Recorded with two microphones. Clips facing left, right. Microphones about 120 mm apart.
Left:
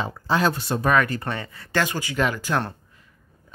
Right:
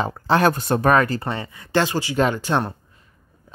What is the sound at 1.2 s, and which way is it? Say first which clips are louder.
Speech: right 2 dB; 20° right (ahead or behind).